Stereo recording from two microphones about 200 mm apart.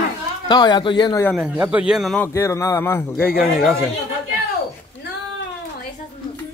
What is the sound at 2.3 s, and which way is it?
Speech, 15° left (ahead or behind).